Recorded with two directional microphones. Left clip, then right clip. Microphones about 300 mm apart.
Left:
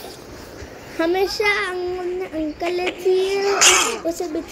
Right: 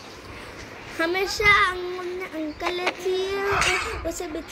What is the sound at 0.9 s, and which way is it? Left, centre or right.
A child's voice, centre.